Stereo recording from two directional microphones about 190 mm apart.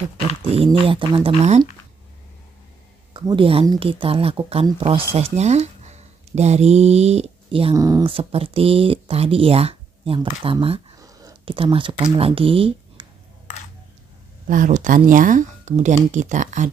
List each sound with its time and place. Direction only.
0.7 s speech: 25° right (ahead or behind)
3.1 s speech: 25° right (ahead or behind)
7.7 s speech: 20° right (ahead or behind)
11.0 s speech: 20° right (ahead or behind)
14.5 s speech: 45° right (ahead or behind)